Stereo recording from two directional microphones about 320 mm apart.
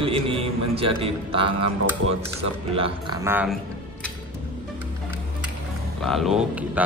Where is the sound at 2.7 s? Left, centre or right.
Centre.